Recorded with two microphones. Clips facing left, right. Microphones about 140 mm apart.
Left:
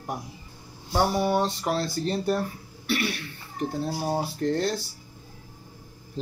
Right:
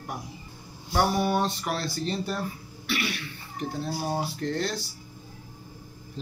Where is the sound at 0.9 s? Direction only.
25° left (ahead or behind).